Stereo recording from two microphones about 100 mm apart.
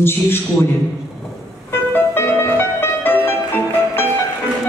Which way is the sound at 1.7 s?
25° left (ahead or behind).